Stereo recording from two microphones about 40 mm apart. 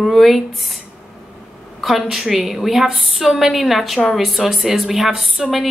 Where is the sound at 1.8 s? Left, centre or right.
Centre.